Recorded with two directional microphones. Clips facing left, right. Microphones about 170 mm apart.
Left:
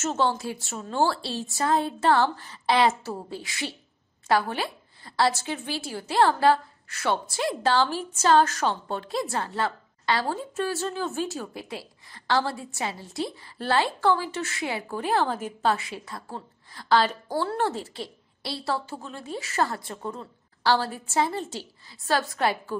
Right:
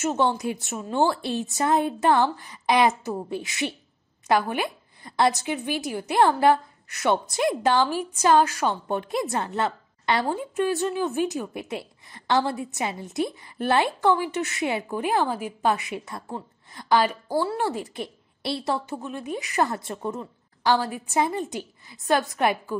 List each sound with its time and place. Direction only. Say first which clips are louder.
0.0 s a woman's voice: right 2 dB; 15° right (ahead or behind)